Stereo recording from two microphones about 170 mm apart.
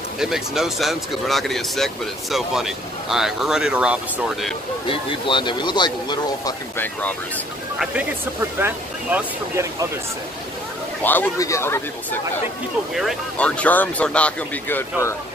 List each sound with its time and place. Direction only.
0.2 s speech: centre (ahead or behind)
4.8 s speech: 30° left (ahead or behind)
6.8 s speech: 10° left (ahead or behind)
7.8 s speech: 10° right (ahead or behind)
11.0 s speech: 10° left (ahead or behind)
12.9 s speech: 5° left (ahead or behind)